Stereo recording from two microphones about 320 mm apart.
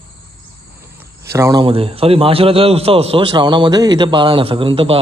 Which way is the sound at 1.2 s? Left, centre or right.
Centre.